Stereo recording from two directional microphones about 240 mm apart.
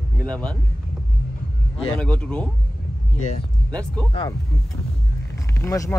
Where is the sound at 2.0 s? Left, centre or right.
Centre.